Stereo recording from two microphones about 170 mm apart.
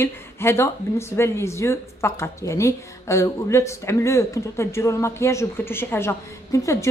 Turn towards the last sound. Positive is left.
turn(degrees=15)  # may be behind; listen again after turning